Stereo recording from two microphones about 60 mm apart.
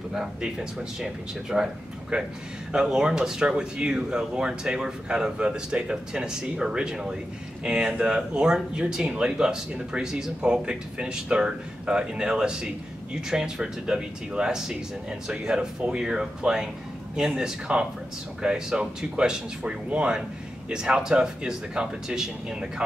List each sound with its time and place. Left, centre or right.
0.1 s speech: centre